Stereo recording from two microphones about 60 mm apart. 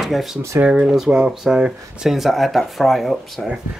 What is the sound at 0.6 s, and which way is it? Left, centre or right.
Speech, centre.